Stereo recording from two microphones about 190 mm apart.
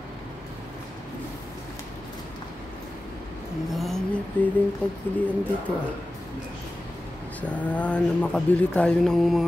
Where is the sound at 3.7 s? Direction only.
Centre (ahead or behind).